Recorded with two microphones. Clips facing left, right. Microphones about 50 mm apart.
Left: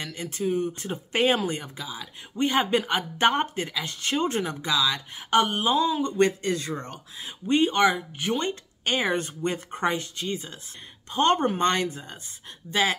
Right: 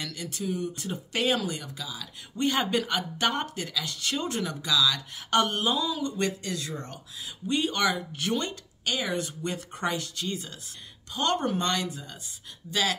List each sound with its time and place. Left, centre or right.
0.0 s speech: left
5.3 s a sound: centre
5.8 s speech: left